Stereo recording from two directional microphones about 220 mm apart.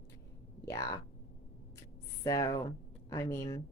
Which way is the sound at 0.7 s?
15° left (ahead or behind).